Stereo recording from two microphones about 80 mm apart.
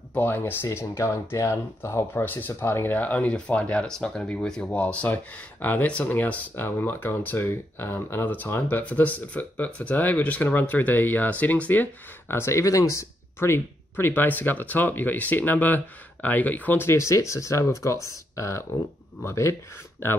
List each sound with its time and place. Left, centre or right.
0.1 s speech: left